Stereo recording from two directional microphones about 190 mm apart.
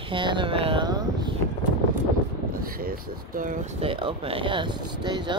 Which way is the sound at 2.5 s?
50° right (ahead or behind).